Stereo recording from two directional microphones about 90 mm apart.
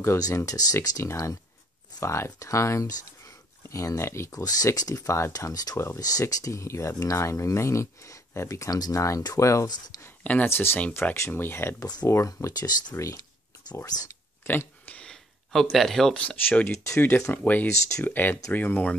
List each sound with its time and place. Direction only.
0.0 s speech: 35° left (ahead or behind)
10.2 s speech: 20° left (ahead or behind)
11.8 s speech: 50° left (ahead or behind)
12.1 s speech: 35° left (ahead or behind)
12.9 s speech: 35° left (ahead or behind)
13.7 s a sound: 35° left (ahead or behind)
14.5 s a sound: 25° left (ahead or behind)
15.0 s a sound: 10° left (ahead or behind)
16.2 s speech: 15° left (ahead or behind)